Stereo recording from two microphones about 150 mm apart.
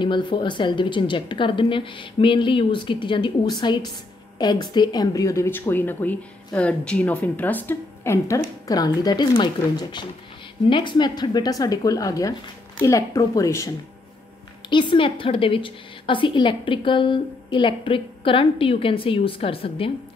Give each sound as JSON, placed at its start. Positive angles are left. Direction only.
{"t": 0.0, "sound": "a woman's voice", "side_deg": 30}
{"t": 14.7, "sound": "a woman's voice", "side_deg": 35}